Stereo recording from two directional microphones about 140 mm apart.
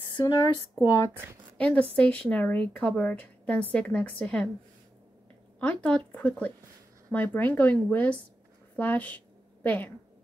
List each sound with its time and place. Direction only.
0.1 s speech: 30° left (ahead or behind)
1.6 s a woman's voice: 10° left (ahead or behind)
5.6 s a woman's voice: 10° left (ahead or behind)